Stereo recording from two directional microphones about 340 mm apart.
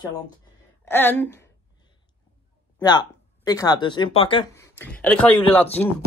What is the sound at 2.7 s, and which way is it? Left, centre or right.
Speech, centre.